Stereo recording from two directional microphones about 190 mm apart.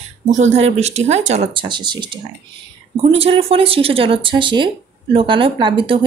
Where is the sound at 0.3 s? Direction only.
35° right (ahead or behind).